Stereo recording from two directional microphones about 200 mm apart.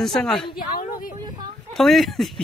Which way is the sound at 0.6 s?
45° left (ahead or behind).